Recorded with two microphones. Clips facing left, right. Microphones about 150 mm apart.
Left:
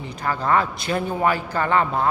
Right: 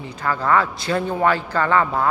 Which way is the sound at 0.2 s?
20° left (ahead or behind).